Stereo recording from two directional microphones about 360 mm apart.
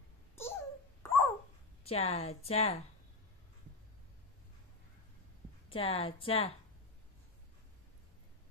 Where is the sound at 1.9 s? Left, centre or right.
Centre.